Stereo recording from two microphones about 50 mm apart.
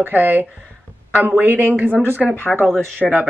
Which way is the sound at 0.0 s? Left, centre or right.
Right.